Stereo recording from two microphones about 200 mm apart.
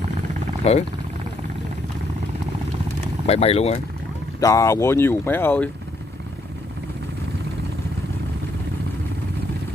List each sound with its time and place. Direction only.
0.7 s speech: 30° left (ahead or behind)
3.3 s speech: 30° left (ahead or behind)
4.4 s speech: 15° left (ahead or behind)